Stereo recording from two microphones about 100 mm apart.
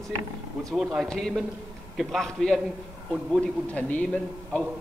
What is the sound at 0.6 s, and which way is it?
A man's voice, centre (ahead or behind).